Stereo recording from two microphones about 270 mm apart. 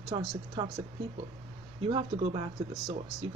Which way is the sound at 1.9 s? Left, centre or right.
Centre.